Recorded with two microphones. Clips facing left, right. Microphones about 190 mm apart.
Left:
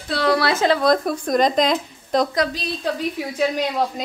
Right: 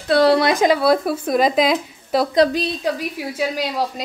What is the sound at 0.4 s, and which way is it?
A woman's voice, 15° right (ahead or behind).